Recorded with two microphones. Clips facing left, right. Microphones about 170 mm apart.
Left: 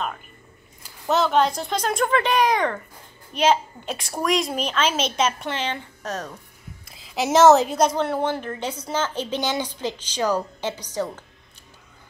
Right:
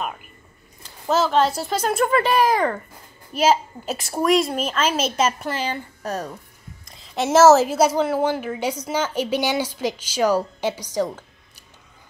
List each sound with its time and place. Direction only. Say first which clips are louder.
0.8 s a woman's voice: right 1 dB; centre (ahead or behind)
6.9 s a woman's voice: right 2 dB; 5° left (ahead or behind)